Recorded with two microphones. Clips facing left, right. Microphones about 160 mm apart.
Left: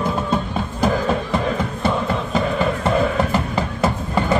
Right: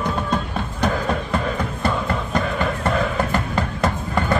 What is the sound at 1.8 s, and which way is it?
Music, 5° left (ahead or behind).